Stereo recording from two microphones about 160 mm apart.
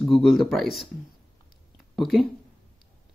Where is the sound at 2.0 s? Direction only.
Centre (ahead or behind).